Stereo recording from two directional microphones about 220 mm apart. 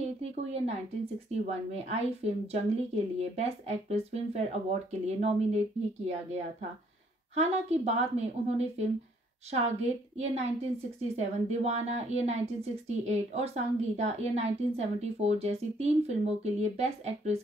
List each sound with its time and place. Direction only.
0.0 s a sound: 30° right (ahead or behind)
1.3 s a woman's voice: 30° right (ahead or behind)
7.3 s a woman's voice: 30° right (ahead or behind)